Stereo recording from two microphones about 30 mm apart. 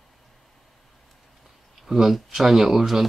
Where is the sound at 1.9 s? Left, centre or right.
Centre.